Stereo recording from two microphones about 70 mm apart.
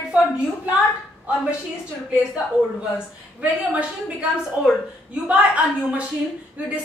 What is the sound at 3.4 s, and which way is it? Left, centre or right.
A woman's voice, centre.